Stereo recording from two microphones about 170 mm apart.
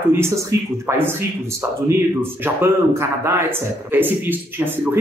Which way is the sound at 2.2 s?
15° right (ahead or behind).